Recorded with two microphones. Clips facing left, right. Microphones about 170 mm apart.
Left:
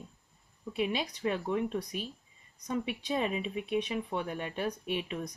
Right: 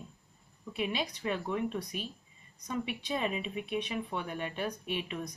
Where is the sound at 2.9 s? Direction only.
35° left (ahead or behind).